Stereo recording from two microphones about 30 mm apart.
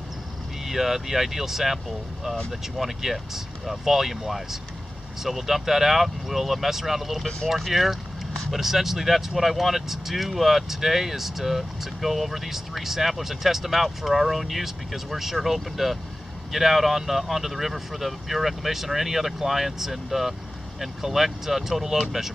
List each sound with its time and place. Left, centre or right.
0.7 s speech: centre
2.8 s speech: centre
21.8 s speech: right